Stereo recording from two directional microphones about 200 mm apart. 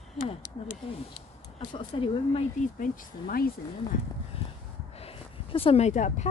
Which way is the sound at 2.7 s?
40° left (ahead or behind).